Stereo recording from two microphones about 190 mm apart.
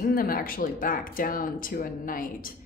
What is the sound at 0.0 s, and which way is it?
A woman's voice, 50° left (ahead or behind).